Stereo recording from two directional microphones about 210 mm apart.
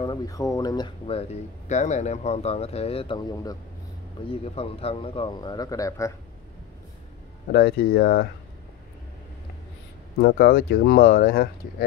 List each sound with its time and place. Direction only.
0.0 s speech: 20° left (ahead or behind)
7.5 s speech: 50° left (ahead or behind)
10.2 s speech: 45° left (ahead or behind)